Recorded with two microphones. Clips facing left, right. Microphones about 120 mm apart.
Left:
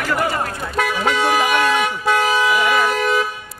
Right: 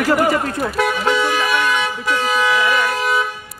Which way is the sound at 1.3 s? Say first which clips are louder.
Left 2 dB; 45° left (ahead or behind).